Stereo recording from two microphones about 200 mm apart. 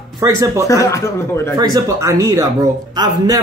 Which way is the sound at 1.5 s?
20° right (ahead or behind).